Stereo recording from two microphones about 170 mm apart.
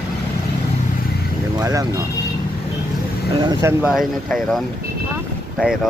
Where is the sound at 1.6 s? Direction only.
20° right (ahead or behind).